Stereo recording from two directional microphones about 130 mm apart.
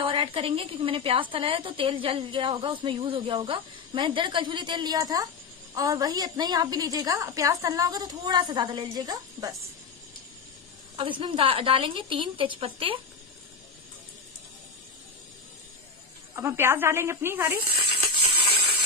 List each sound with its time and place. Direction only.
0.0 s a woman's voice: 40° right (ahead or behind)
11.0 s a woman's voice: 40° right (ahead or behind)
16.3 s speech: 15° right (ahead or behind)